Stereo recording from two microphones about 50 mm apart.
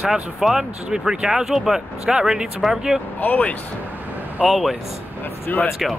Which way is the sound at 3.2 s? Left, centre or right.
Left.